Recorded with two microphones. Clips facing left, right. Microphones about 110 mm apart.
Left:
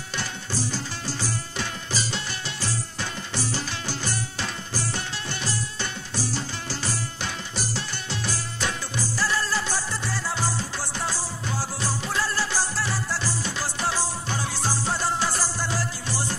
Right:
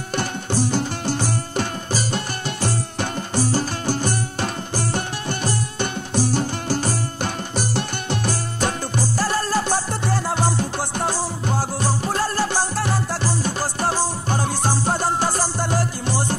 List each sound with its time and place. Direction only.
0.1 s music: 55° right (ahead or behind)